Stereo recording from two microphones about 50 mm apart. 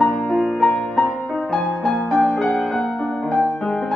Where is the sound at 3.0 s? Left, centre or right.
Centre.